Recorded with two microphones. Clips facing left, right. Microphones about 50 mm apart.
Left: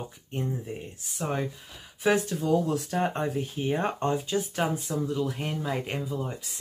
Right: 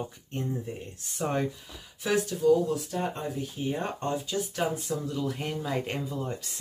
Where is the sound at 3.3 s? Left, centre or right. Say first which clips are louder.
Left 3 dB; left.